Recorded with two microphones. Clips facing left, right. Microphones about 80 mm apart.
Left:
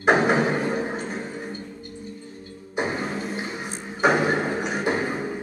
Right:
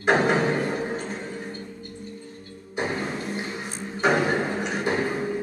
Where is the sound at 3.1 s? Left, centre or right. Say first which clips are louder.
Left 1 dB; centre.